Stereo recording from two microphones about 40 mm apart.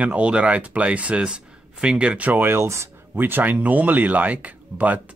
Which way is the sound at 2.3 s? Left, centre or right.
Right.